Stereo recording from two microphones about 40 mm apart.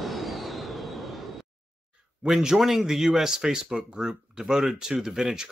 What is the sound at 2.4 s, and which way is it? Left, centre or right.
Speech, centre.